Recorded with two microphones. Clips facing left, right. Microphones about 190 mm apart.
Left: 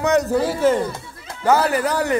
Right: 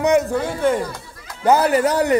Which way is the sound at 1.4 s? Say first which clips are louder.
Right 2 dB; 20° right (ahead or behind).